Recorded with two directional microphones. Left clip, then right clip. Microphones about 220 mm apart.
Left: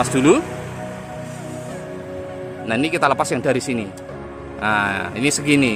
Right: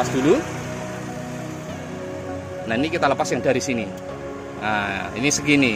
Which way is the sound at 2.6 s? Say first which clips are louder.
Left 3 dB; 15° left (ahead or behind).